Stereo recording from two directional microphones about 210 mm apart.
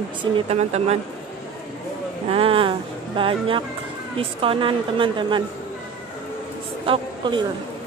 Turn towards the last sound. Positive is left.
turn(degrees=-20)  # may be behind; listen again after turning